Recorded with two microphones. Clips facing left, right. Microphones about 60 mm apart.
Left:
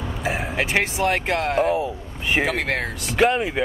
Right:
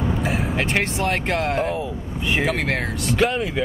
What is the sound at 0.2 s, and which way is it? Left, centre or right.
Speech, centre.